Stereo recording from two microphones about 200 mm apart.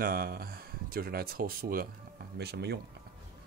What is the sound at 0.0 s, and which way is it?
Speech, 50° right (ahead or behind).